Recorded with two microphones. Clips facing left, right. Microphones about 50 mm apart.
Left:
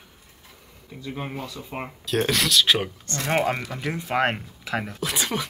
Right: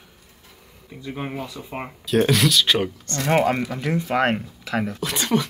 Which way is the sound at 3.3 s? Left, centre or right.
Centre.